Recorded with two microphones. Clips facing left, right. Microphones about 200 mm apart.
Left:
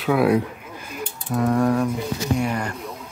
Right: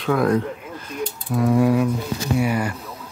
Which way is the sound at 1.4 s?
5° right (ahead or behind).